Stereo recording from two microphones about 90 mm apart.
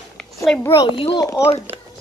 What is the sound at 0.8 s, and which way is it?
Speech, 80° left.